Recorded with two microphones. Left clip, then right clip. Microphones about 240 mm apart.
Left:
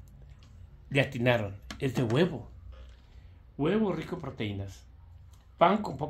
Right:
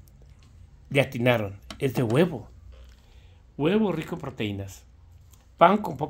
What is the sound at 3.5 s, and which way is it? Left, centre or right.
Speech, right.